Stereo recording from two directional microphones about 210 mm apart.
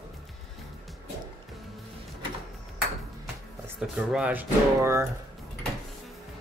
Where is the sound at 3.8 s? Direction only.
5° right (ahead or behind).